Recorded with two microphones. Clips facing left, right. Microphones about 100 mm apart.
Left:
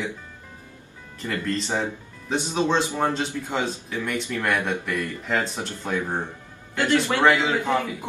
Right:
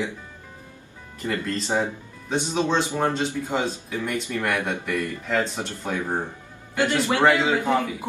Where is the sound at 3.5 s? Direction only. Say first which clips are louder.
Right 1 dB; 15° right (ahead or behind).